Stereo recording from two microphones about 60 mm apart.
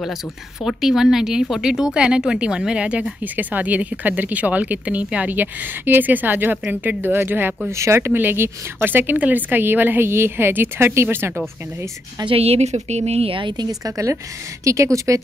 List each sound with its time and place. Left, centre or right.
0.7 s speech: centre; by 7.5 s right
7.7 s speech: right
12.2 s a woman's voice: right
13.7 s a woman's voice: right
14.6 s a woman's voice: right